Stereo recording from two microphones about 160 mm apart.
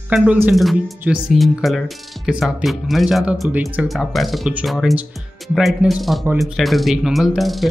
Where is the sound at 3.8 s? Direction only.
Centre (ahead or behind).